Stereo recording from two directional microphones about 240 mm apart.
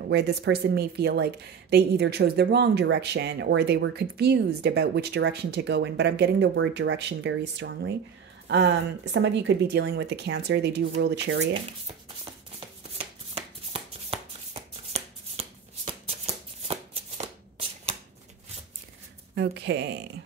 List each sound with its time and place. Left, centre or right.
0.1 s speech: right
9.1 s speech: right
12.5 s shuffling cards: right
19.3 s speech: right